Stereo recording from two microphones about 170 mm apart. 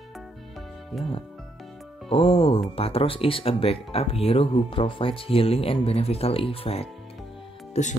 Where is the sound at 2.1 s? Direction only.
35° left (ahead or behind).